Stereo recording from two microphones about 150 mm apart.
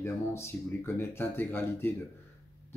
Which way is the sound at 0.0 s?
15° left (ahead or behind).